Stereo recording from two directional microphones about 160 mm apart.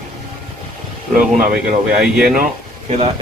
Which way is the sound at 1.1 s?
65° right (ahead or behind).